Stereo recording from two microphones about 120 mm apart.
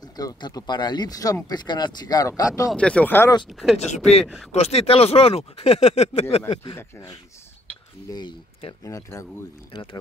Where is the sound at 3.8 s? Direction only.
65° left (ahead or behind).